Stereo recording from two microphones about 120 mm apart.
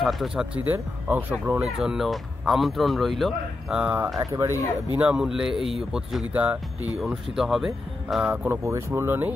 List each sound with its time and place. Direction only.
0.0 s speech: centre (ahead or behind)
0.7 s speech: 15° right (ahead or behind); by 3.8 s centre (ahead or behind)
3.8 s speech: 15° right (ahead or behind)
4.2 s speech: 25° right (ahead or behind)
4.9 s speech: 10° right (ahead or behind)
7.0 s speech: centre (ahead or behind)
8.3 s speech: 20° right (ahead or behind)